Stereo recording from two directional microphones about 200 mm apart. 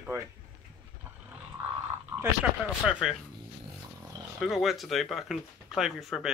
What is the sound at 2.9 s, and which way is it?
Speech, 5° right (ahead or behind).